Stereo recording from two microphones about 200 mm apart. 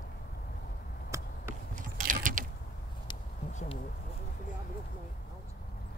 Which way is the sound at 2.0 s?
40° right (ahead or behind).